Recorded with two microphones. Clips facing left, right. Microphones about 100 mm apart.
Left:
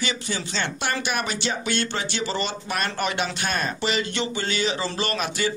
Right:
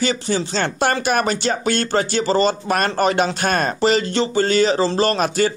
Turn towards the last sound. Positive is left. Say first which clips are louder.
# right 9 dB
turn(degrees=-40)  # may be behind; listen again after turning